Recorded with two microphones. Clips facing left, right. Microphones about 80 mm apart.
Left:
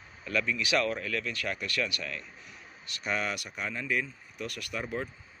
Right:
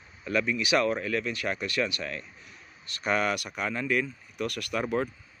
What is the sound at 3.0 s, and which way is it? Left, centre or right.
Speech, right.